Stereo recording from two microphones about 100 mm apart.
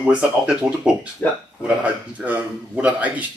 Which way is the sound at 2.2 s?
15° right (ahead or behind).